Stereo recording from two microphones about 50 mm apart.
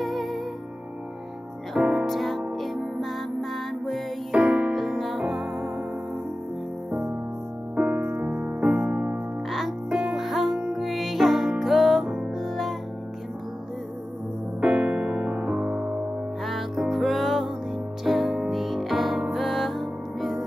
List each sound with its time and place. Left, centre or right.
0.0 s music: centre
1.8 s music: centre
2.0 s music: centre
4.3 s music: right
4.7 s music: centre
7.7 s music: right
9.5 s music: centre
9.8 s music: centre
10.1 s music: centre
14.6 s music: right
16.4 s music: centre